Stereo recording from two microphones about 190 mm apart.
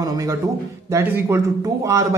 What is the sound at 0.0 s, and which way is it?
Speech, 20° right (ahead or behind).